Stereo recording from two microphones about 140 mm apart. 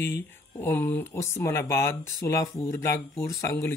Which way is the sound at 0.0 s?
15° left (ahead or behind).